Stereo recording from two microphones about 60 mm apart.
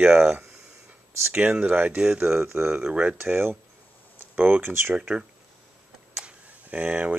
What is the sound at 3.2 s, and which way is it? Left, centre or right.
Speech, right.